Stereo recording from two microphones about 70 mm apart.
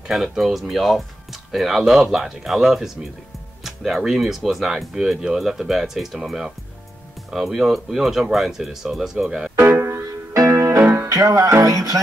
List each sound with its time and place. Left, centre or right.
0.1 s speech: centre
9.6 s music: right
10.8 s music: right
11.1 s music: right
11.6 s music: right